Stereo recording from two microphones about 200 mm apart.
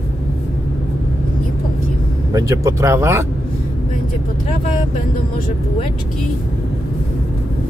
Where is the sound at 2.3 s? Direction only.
15° right (ahead or behind).